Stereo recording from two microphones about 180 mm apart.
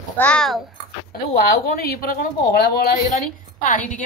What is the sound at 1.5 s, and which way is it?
A woman's voice, 55° left (ahead or behind).